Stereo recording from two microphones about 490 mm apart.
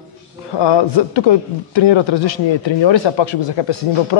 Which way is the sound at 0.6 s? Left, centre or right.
Left.